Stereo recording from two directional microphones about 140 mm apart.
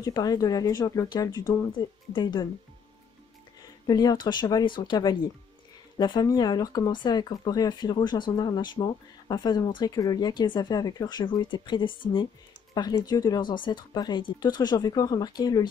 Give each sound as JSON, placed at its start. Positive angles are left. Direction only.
{"t": 0.0, "sound": "speech", "side_deg": 25}
{"t": 3.8, "sound": "speech", "side_deg": 25}